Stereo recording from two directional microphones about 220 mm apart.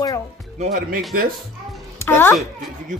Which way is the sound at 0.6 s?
35° right (ahead or behind).